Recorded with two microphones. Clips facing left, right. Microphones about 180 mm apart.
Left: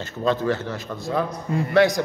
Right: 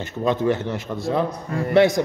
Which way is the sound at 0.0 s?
20° right (ahead or behind).